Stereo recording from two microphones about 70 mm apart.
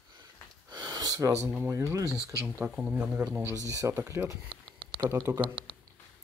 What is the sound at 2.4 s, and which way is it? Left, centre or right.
Speech, centre.